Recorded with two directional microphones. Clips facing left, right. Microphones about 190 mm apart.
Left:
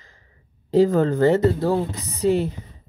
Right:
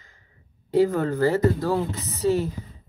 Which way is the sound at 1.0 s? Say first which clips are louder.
Left 4 dB; 25° left (ahead or behind).